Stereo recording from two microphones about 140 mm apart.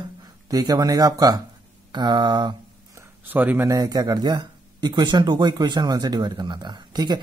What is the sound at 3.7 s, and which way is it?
Speech, 30° right (ahead or behind).